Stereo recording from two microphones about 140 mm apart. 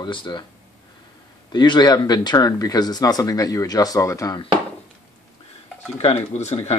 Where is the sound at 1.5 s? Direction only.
30° left (ahead or behind).